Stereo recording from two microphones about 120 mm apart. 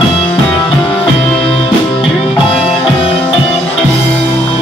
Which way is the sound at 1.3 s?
50° left (ahead or behind).